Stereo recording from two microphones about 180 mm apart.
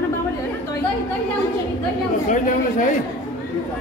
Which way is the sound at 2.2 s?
45° left (ahead or behind).